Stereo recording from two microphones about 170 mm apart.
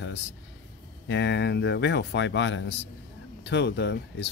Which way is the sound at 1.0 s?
90° left.